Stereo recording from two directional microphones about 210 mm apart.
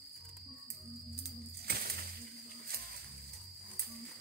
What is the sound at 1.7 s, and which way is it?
Music, 45° right (ahead or behind).